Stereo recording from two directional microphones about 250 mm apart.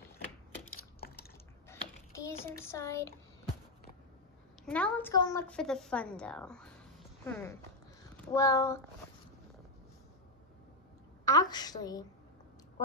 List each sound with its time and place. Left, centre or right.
1.7 s a sound: centre
2.6 s a woman's voice: centre
4.6 s a woman's voice: centre
11.2 s a woman's voice: centre